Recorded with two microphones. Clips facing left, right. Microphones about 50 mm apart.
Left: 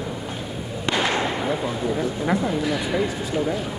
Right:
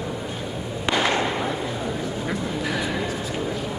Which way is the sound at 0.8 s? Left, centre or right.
Centre.